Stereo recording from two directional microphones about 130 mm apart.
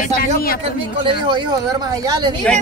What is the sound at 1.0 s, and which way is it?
Speech, 35° right (ahead or behind).